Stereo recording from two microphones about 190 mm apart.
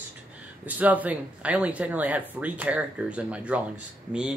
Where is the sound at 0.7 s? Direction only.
10° right (ahead or behind).